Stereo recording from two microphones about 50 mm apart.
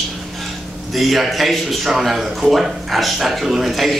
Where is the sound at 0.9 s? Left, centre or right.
Centre.